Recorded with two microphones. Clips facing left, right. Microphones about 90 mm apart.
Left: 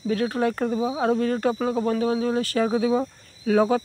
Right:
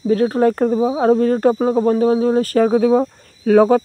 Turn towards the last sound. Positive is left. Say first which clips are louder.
# right 8 dB
turn(degrees=-45)  # may be behind; listen again after turning